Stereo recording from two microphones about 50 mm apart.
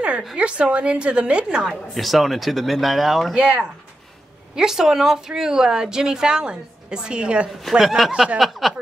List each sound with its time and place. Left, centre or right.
0.4 s a woman's voice: right
1.7 s speech: centre
3.3 s a woman's voice: right
4.6 s a woman's voice: centre
7.8 s speech: centre